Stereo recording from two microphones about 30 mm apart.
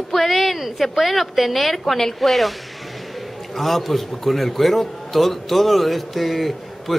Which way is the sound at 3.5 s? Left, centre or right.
Centre.